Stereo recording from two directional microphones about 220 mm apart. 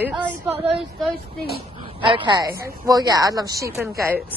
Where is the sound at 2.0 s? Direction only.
20° right (ahead or behind).